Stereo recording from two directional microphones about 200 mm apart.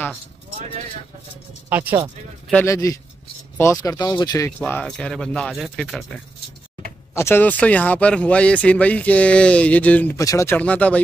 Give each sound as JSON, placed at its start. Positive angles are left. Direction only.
{"t": 1.7, "sound": "speech", "side_deg": -10}
{"t": 2.5, "sound": "speech", "side_deg": 15}
{"t": 7.2, "sound": "speech", "side_deg": 10}